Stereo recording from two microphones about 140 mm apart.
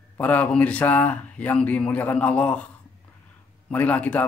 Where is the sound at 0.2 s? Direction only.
10° left (ahead or behind).